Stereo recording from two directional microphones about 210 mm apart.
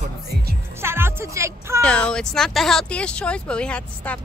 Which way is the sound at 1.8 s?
5° left (ahead or behind).